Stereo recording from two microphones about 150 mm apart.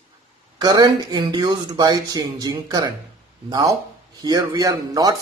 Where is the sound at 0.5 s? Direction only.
25° right (ahead or behind).